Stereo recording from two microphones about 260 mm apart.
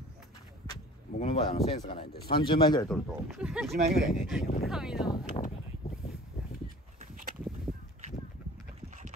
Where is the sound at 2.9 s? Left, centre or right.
Centre.